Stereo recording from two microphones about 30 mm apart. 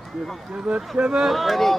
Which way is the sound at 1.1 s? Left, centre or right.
Centre.